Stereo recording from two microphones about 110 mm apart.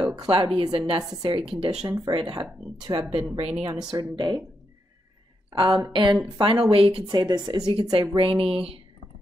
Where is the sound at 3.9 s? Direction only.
35° right (ahead or behind).